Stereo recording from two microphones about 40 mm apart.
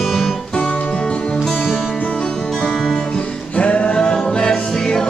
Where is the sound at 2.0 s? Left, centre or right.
Left.